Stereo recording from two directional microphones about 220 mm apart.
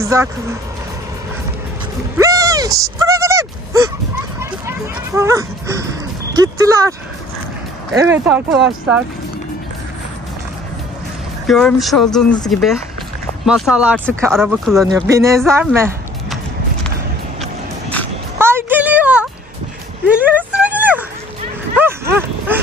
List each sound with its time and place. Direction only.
0.0 s speech: 15° right (ahead or behind)
2.1 s a sound: 15° right (ahead or behind)
4.4 s dog: 10° right (ahead or behind)
6.3 s speech: 15° right (ahead or behind)
8.0 s speech: 10° right (ahead or behind)
11.4 s speech: centre (ahead or behind)
14.7 s speech: 15° right (ahead or behind)
18.4 s a sound: 10° right (ahead or behind)
21.7 s dog: 10° right (ahead or behind)